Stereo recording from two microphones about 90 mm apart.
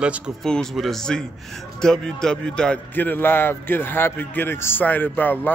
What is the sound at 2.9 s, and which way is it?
A man's voice, 20° left (ahead or behind).